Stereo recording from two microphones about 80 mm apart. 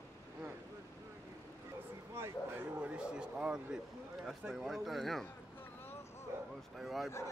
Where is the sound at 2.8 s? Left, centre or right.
Centre.